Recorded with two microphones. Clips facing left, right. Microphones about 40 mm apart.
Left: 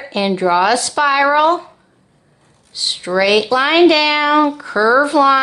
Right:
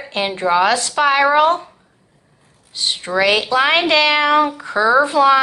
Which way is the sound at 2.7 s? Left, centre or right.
Right.